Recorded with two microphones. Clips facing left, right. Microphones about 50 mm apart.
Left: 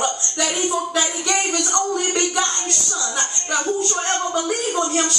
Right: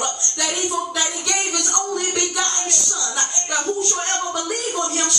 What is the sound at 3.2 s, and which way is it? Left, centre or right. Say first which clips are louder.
Speech: left 1 dB; centre.